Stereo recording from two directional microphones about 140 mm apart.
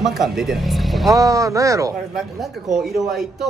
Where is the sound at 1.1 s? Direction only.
25° right (ahead or behind).